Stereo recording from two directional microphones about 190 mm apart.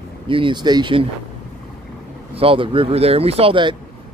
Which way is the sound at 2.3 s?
30° right (ahead or behind).